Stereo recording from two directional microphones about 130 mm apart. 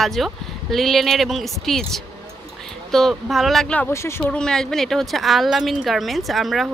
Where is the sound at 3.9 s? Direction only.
20° left (ahead or behind).